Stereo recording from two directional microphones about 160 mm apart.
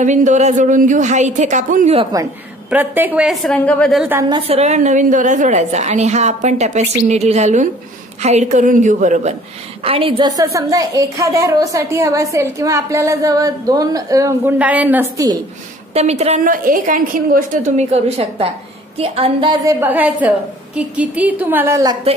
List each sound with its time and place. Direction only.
0.0 s a woman's voice: 50° right (ahead or behind)
2.7 s a woman's voice: 10° right (ahead or behind)
3.5 s a woman's voice: 10° left (ahead or behind)
4.4 s a woman's voice: 40° right (ahead or behind)
9.8 s a woman's voice: 35° right (ahead or behind)
14.6 s a woman's voice: 10° right (ahead or behind)
15.9 s a woman's voice: 40° right (ahead or behind)
16.4 s a woman's voice: 60° right (ahead or behind); by 19.5 s 35° right (ahead or behind)
19.6 s a woman's voice: 15° right (ahead or behind)